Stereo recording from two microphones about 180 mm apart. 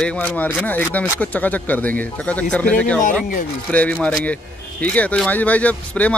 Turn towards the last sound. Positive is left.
turn(degrees=5)  # may be behind; listen again after turning